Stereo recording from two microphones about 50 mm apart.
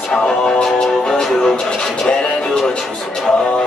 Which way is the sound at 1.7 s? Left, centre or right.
Centre.